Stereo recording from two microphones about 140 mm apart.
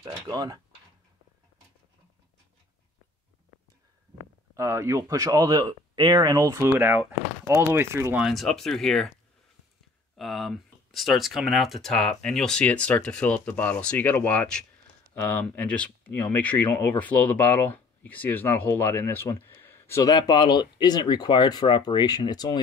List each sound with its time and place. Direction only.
0.0 s speech: 30° right (ahead or behind)
4.6 s speech: 20° right (ahead or behind)
6.8 s speech: 10° right (ahead or behind)
8.2 s speech: centre (ahead or behind)
10.1 s speech: centre (ahead or behind); by 22.6 s 30° left (ahead or behind)